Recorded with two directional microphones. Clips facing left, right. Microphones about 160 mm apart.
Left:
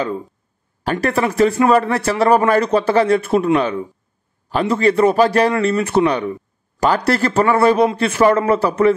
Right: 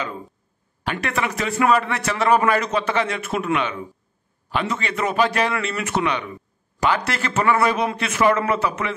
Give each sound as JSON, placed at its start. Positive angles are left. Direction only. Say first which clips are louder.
{"t": 0.8, "sound": "a man's voice", "louder": "left 7 dB", "side_deg": 35}